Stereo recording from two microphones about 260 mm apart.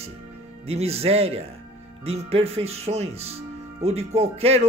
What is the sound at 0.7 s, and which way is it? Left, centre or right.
Speech, right.